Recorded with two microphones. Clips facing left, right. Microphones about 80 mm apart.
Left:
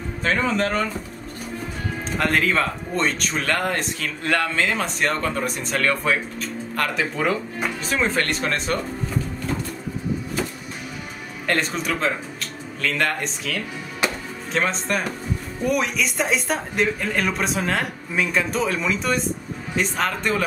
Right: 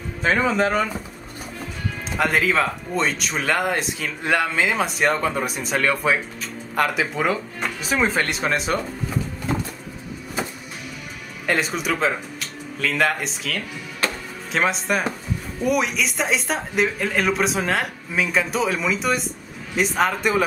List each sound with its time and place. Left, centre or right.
0.2 s a man's voice: centre
2.1 s a man's voice: centre
11.4 s speech: centre
14.0 s music: centre
14.5 s a man's voice: centre